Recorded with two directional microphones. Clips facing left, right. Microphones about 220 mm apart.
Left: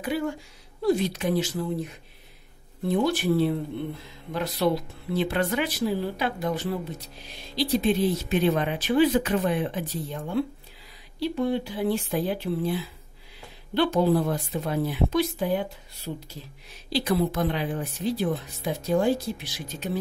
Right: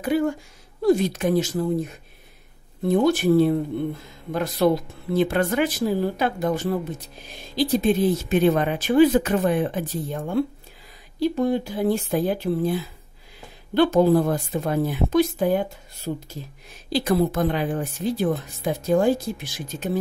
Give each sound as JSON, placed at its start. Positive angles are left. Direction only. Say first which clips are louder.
{"t": 0.1, "sound": "speech", "louder": "right 6 dB", "side_deg": -45}
{"t": 2.9, "sound": "speech", "louder": "right 5 dB", "side_deg": -45}